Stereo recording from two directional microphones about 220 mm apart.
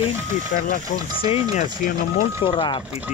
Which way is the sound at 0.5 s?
40° left (ahead or behind).